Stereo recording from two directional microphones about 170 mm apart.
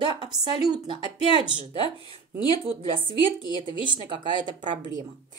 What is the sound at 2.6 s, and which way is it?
Speech, 30° right (ahead or behind).